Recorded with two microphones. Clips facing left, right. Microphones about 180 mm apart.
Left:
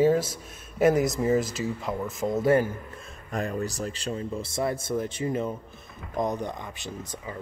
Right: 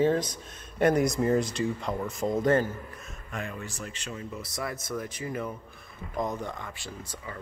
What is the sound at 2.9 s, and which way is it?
Speech, 30° left (ahead or behind).